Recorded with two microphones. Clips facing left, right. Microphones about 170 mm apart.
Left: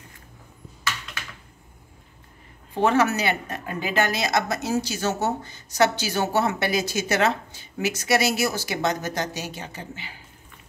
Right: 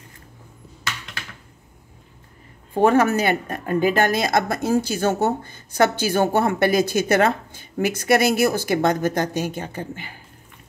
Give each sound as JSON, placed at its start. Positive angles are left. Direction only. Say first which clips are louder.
{"t": 2.7, "sound": "speech", "louder": "right 4 dB", "side_deg": -50}